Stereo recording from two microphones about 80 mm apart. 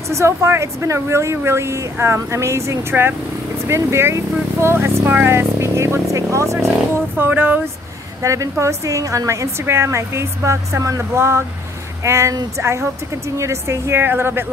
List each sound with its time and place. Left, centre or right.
0.1 s a woman's voice: right
7.2 s a sound: right
8.2 s a woman's voice: right